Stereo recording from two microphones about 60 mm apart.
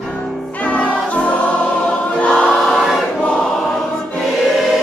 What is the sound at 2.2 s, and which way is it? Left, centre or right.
Choir, centre.